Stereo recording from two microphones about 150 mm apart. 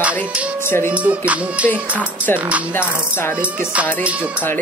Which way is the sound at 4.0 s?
10° right (ahead or behind).